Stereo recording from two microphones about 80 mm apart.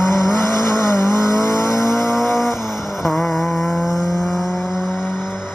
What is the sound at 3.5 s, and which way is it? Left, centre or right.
Vehicle, centre.